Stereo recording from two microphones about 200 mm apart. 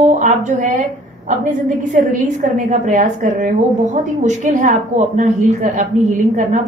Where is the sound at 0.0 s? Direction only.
35° right (ahead or behind).